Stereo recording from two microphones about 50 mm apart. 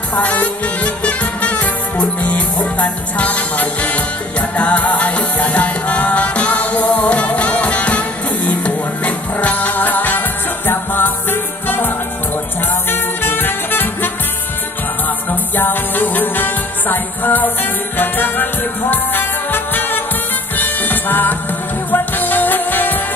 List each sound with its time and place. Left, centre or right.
0.1 s music: left
12.9 s music: left
15.5 s music: left